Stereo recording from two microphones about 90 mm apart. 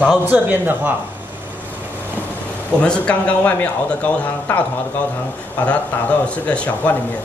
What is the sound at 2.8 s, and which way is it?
A man's voice, 15° left (ahead or behind).